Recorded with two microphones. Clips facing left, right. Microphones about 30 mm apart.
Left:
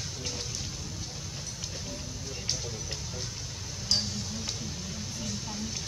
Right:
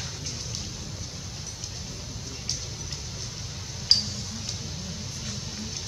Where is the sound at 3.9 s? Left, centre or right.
Right.